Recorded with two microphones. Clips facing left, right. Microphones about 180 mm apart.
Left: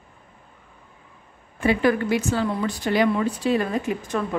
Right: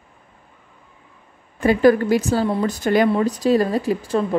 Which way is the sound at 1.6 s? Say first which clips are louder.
Right 6 dB; 40° right (ahead or behind).